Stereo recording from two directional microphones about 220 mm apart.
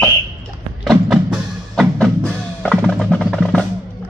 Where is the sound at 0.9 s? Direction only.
Centre (ahead or behind).